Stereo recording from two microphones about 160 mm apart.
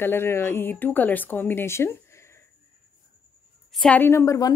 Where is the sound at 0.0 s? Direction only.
15° left (ahead or behind).